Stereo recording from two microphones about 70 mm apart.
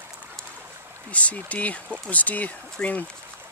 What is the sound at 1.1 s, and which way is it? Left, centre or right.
Speech, centre.